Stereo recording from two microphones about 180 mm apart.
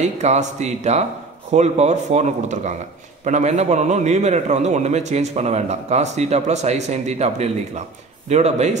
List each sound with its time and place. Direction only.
0.2 s a man's voice: 40° right (ahead or behind)